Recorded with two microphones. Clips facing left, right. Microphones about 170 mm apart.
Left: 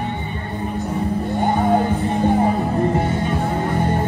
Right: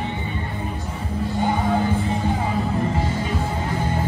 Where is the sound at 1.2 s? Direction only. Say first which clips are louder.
Left 2 dB; 55° left (ahead or behind).